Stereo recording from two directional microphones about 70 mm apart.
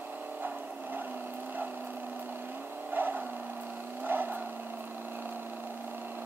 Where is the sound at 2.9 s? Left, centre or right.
Right.